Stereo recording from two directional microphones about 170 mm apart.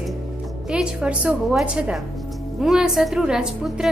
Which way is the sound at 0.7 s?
5° right (ahead or behind).